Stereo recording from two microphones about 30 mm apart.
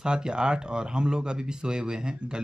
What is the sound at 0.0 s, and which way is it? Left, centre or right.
Speech, right.